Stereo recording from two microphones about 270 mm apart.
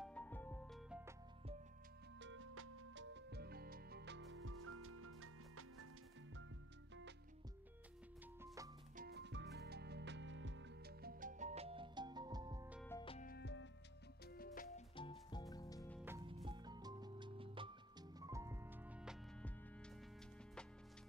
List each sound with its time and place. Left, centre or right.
0.0 s music: centre
2.1 s music: right
8.4 s music: centre
8.9 s music: right; by 12.8 s centre
13.0 s music: left
13.3 s music: left
15.0 s music: centre
16.4 s music: centre